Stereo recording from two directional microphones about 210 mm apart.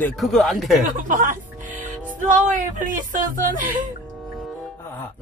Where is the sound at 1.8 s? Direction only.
35° right (ahead or behind).